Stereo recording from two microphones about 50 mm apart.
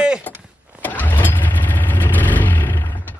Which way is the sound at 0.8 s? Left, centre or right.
Left.